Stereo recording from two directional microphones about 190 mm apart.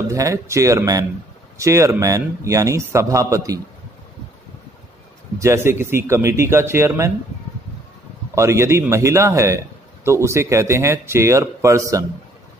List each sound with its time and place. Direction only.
0.1 s a man's voice: 15° right (ahead or behind)
5.4 s a man's voice: 15° right (ahead or behind)
8.4 s a man's voice: 15° right (ahead or behind)